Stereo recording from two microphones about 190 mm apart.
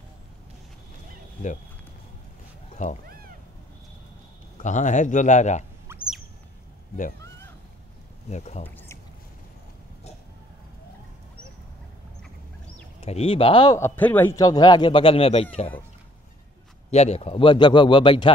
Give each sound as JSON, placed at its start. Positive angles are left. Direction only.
{"t": 3.1, "sound": "cat", "side_deg": -50}
{"t": 4.6, "sound": "speech", "side_deg": 40}
{"t": 5.9, "sound": "rodents", "side_deg": -15}
{"t": 8.3, "sound": "speech", "side_deg": 35}
{"t": 8.6, "sound": "a sound", "side_deg": 10}
{"t": 13.0, "sound": "a man's voice", "side_deg": 30}
{"t": 13.7, "sound": "a man's voice", "side_deg": 10}
{"t": 16.9, "sound": "a man's voice", "side_deg": 35}